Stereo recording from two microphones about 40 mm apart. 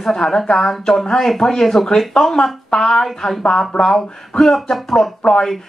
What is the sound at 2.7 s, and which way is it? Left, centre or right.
Speech, left.